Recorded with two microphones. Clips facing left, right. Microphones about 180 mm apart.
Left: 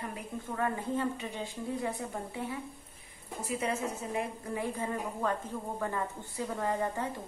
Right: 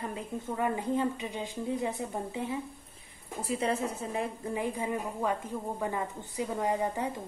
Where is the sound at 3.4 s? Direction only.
35° right (ahead or behind).